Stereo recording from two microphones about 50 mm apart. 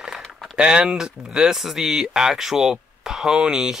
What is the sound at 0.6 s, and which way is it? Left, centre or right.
Speech, centre.